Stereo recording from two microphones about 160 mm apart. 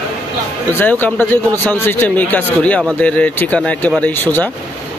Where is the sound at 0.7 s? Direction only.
15° left (ahead or behind).